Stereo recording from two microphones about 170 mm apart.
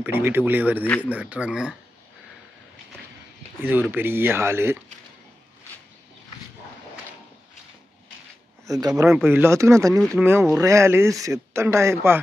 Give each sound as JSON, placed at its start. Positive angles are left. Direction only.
{"t": 0.0, "sound": "speech", "side_deg": -10}
{"t": 3.9, "sound": "speech", "side_deg": -15}
{"t": 8.6, "sound": "speech", "side_deg": -20}